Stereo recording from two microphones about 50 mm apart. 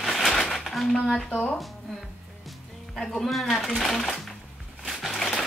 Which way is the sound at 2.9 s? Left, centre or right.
Centre.